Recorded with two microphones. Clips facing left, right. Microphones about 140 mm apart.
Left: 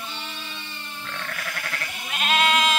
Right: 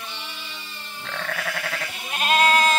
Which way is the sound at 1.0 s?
90° right.